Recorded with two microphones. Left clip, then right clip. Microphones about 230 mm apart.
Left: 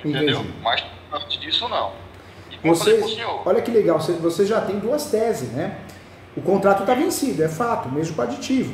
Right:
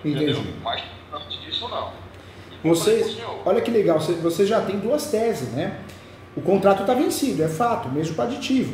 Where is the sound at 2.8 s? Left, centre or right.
Left.